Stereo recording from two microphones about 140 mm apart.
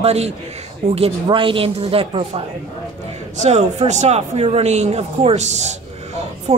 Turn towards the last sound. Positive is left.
turn(degrees=-50)  # may be behind; listen again after turning